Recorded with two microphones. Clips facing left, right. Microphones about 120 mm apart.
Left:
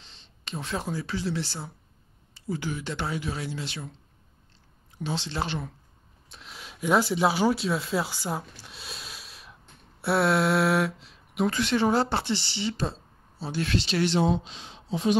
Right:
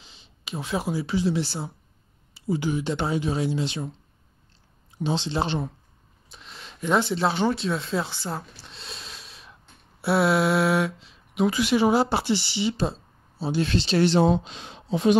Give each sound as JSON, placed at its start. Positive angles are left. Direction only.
{"t": 0.0, "sound": "speech", "side_deg": -5}
{"t": 4.9, "sound": "speech", "side_deg": -20}
{"t": 6.2, "sound": "speech", "side_deg": 0}
{"t": 13.7, "sound": "speech", "side_deg": -30}